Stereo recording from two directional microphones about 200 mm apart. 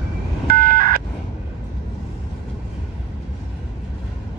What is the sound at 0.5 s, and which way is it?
Telephone dialing, 50° right (ahead or behind).